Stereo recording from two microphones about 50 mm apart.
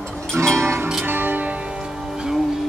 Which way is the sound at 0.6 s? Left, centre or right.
Right.